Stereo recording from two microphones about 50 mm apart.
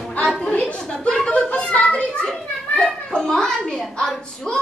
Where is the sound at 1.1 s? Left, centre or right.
Left.